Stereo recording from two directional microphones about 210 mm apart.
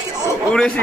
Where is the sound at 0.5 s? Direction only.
5° left (ahead or behind).